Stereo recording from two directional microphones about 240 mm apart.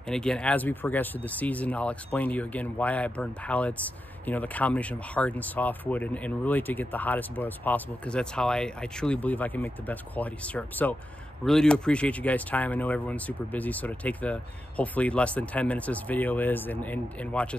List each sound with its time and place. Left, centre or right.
0.1 s speech: centre